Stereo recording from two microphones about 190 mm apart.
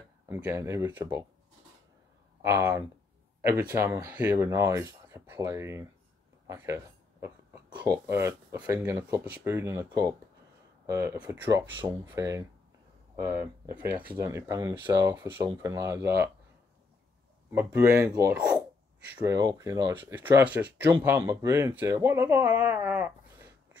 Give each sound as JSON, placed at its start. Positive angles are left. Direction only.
{"t": 0.3, "sound": "speech", "side_deg": -15}
{"t": 2.4, "sound": "speech", "side_deg": -15}
{"t": 6.4, "sound": "a sound", "side_deg": -15}
{"t": 7.8, "sound": "speech", "side_deg": -15}
{"t": 17.5, "sound": "speech", "side_deg": -10}